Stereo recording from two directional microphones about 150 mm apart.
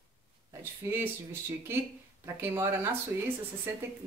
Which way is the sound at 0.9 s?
15° right (ahead or behind).